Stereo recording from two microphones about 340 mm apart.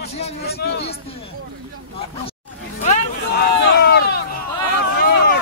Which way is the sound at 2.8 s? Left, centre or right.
Left.